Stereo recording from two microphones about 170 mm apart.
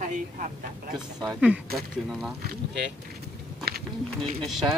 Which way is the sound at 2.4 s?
80° right.